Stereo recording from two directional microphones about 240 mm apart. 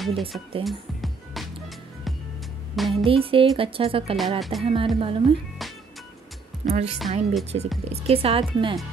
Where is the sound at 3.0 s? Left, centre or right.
Right.